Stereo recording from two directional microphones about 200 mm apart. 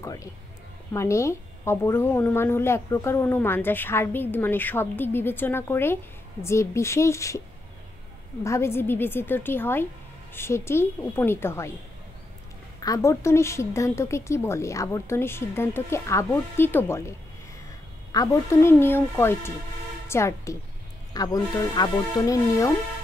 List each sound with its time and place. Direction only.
0.0 s a woman's voice: 15° left (ahead or behind)
8.5 s a woman's voice: 15° left (ahead or behind)
12.8 s a woman's voice: 15° left (ahead or behind)
18.1 s a woman's voice: 15° left (ahead or behind)